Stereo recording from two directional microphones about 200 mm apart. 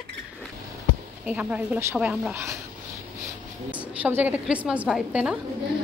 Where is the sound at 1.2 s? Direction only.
5° right (ahead or behind).